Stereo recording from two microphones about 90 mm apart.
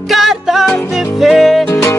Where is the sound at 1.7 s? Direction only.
30° left (ahead or behind).